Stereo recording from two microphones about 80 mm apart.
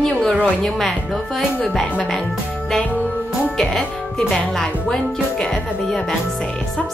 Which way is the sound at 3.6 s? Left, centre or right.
Centre.